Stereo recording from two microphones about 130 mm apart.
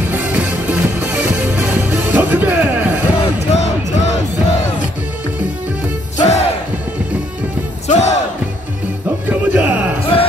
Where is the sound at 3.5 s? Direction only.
60° left (ahead or behind).